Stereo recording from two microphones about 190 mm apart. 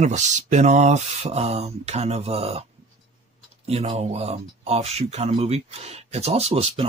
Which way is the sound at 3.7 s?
35° right (ahead or behind).